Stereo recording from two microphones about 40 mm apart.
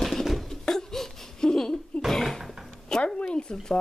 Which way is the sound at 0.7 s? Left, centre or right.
Centre.